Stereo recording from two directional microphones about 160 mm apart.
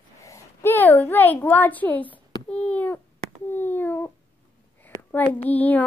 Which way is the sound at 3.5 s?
10° left (ahead or behind).